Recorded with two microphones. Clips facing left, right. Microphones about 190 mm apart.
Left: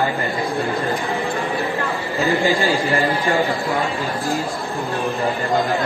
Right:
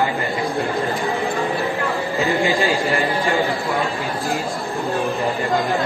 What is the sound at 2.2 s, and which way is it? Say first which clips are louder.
Speech: left 1 dB; 15° right (ahead or behind).